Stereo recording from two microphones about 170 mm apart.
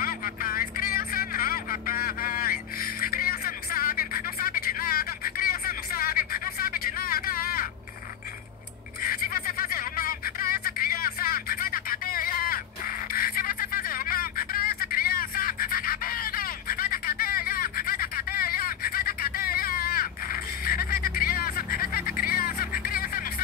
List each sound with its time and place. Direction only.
0.0 s vehicle: 55° left (ahead or behind)
9.0 s snicker: 60° left (ahead or behind)
22.2 s music: 55° left (ahead or behind)